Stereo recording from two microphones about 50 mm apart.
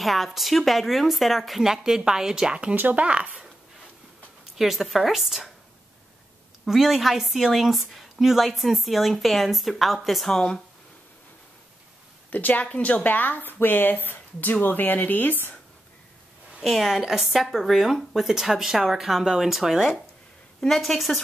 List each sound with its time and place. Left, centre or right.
0.0 s a woman's voice: centre
2.7 s speech: right
4.6 s a woman's voice: centre
6.6 s a woman's voice: centre
10.3 s speech: centre
12.3 s speech: left
16.6 s a woman's voice: centre
20.6 s a woman's voice: centre